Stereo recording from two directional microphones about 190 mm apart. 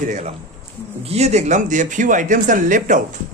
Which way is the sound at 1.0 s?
35° right (ahead or behind).